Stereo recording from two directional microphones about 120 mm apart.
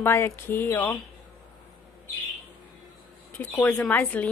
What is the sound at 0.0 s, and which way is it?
Speech, 20° left (ahead or behind).